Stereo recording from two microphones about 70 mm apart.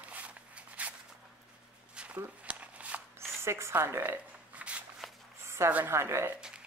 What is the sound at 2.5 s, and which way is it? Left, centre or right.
Shuffling cards, centre.